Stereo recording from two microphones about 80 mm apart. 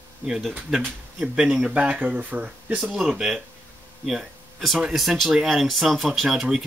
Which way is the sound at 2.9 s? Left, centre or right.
Centre.